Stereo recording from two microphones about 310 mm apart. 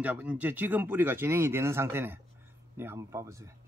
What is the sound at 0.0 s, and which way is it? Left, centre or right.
Speech, centre.